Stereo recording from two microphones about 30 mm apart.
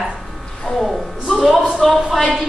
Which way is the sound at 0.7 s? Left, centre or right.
Left.